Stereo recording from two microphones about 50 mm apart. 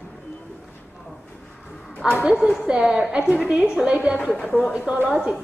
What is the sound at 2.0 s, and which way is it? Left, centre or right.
A woman's voice, centre.